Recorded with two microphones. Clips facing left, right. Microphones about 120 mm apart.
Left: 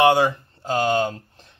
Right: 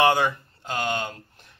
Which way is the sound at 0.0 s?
25° left (ahead or behind).